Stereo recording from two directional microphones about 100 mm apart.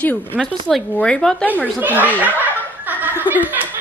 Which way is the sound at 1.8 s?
15° right (ahead or behind).